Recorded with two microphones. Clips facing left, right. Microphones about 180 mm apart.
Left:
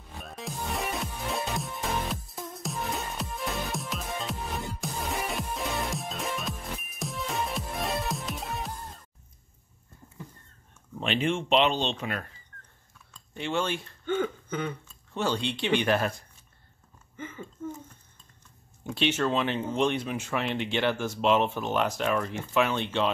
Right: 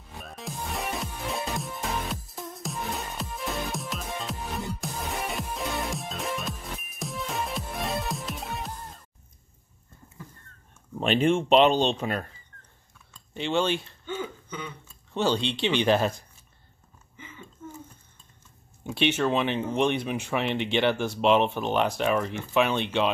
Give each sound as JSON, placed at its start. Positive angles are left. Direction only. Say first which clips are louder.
{"t": 0.2, "sound": "music", "louder": "even", "side_deg": 0}
{"t": 11.0, "sound": "speech", "louder": "right 5 dB", "side_deg": -45}
{"t": 13.3, "sound": "speech", "louder": "right 4 dB", "side_deg": -25}
{"t": 14.0, "sound": "a sound", "louder": "left 5 dB", "side_deg": 55}
{"t": 15.1, "sound": "speech", "louder": "right 3 dB", "side_deg": -25}
{"t": 17.2, "sound": "a sound", "louder": "left 7 dB", "side_deg": 50}
{"t": 18.9, "sound": "speech", "louder": "right 2 dB", "side_deg": -10}